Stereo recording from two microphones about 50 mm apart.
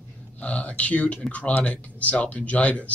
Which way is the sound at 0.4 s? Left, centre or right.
Left.